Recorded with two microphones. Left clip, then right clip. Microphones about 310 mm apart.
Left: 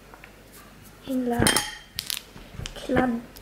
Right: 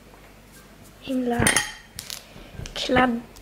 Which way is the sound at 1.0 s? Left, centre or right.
Centre.